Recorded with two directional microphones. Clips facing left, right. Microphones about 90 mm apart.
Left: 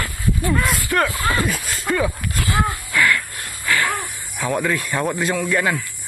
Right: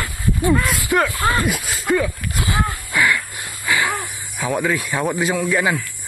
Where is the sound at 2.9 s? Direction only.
15° right (ahead or behind).